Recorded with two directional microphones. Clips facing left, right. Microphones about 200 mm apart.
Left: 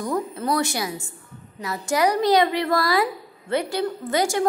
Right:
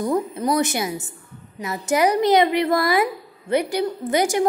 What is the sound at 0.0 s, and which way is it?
Speech, 20° right (ahead or behind).